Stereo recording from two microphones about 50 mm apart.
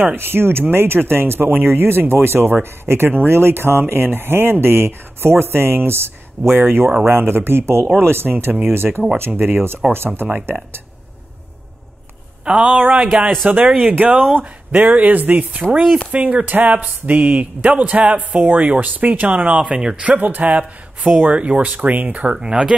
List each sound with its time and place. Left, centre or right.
0.0 s speech: right
12.4 s speech: right
19.6 s speech: centre
20.0 s speech: right
22.3 s speech: centre